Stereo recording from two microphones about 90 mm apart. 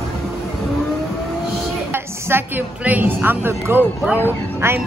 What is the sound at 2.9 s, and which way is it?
Speech, 20° right (ahead or behind).